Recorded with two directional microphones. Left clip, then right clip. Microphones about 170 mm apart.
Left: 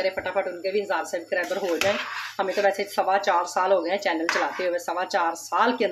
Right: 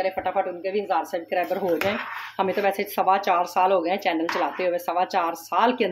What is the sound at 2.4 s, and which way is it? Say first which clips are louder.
Speech: even; 30° right (ahead or behind).